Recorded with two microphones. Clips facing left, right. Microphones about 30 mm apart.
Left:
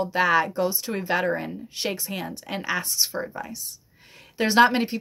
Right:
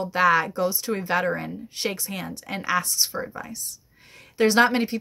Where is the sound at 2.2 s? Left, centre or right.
Centre.